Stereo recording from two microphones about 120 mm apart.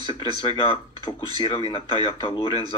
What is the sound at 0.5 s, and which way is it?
Speech, 45° left (ahead or behind).